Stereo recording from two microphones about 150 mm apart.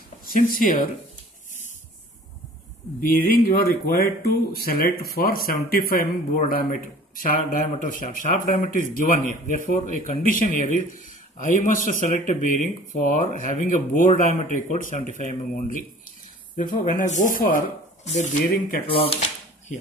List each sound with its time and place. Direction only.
0.2 s speech: 70° left (ahead or behind)
3.1 s speech: 70° left (ahead or behind)
16.5 s speech: 70° left (ahead or behind)
16.9 s speech: 60° left (ahead or behind)
18.0 s speech: 50° left (ahead or behind)
18.9 s speech: 35° left (ahead or behind)